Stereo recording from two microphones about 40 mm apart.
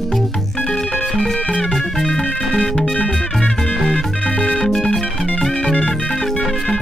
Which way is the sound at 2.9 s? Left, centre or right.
Left.